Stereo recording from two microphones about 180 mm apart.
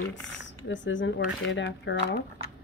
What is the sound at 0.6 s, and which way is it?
Speech, 90° left.